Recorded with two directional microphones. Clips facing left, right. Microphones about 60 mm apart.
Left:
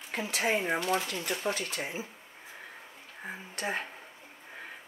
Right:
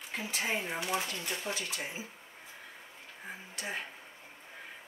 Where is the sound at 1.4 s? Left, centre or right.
Left.